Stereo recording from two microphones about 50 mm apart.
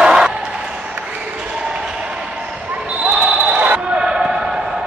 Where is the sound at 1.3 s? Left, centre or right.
Centre.